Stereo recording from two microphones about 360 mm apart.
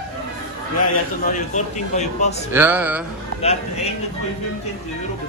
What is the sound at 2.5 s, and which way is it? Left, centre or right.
Speech, centre.